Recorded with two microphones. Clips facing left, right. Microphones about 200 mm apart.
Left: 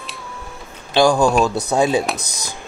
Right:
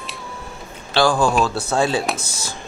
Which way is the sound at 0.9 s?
15° left (ahead or behind).